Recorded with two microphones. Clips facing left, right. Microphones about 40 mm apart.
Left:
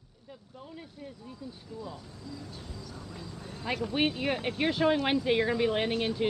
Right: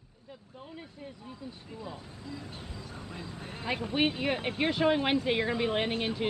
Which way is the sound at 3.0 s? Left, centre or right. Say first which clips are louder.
Right 1 dB; right.